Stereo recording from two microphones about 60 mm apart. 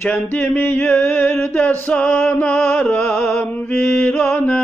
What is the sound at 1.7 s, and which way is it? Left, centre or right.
Mantra, left.